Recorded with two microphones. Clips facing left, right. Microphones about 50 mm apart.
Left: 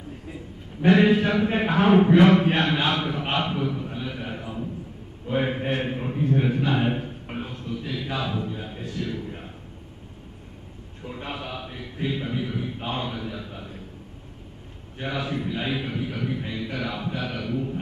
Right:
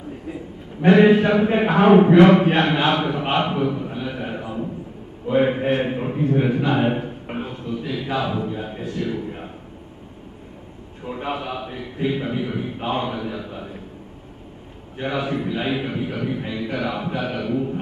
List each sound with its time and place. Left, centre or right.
0.8 s a man's voice: centre
5.7 s a sound: centre
11.1 s a man's voice: centre
15.0 s a man's voice: centre